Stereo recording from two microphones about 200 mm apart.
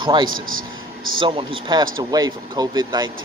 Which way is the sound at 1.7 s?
20° right (ahead or behind).